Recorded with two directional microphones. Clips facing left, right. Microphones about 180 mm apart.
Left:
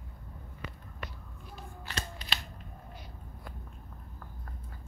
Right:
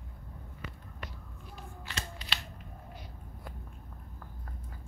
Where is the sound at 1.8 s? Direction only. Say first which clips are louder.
Left 2 dB; 45° left (ahead or behind).